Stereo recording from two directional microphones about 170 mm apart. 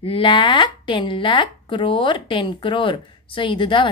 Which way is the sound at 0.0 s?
30° left (ahead or behind).